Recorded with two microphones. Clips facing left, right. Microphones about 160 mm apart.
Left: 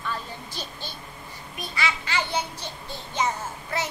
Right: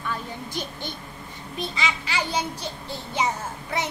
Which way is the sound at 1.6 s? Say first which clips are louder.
Right 1 dB; 20° right (ahead or behind).